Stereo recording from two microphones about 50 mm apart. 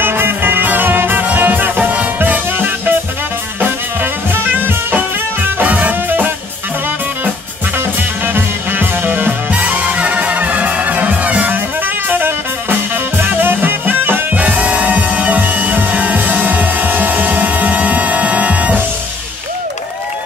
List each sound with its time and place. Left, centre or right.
0.0 s music: right
8.3 s music: right
9.6 s music: right
12.1 s music: right
14.3 s music: right